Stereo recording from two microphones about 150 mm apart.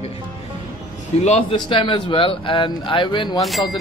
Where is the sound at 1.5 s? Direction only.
30° left (ahead or behind).